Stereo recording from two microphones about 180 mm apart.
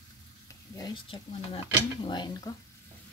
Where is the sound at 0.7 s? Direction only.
25° left (ahead or behind).